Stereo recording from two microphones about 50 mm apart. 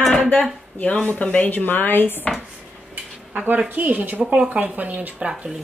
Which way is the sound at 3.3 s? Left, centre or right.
Right.